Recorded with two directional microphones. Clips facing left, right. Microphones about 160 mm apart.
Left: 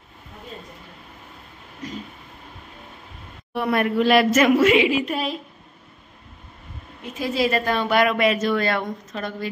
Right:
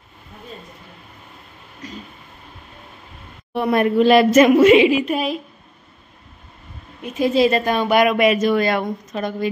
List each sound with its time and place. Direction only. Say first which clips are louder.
3.5 s a woman's voice: right 4 dB; 25° right (ahead or behind)
7.2 s a woman's voice: right 6 dB; 20° right (ahead or behind)